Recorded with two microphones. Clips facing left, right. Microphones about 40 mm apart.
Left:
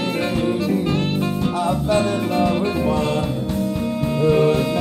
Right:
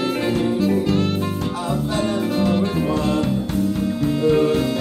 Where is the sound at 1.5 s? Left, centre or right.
Left.